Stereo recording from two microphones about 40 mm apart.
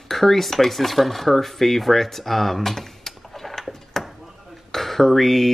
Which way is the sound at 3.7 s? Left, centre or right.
Centre.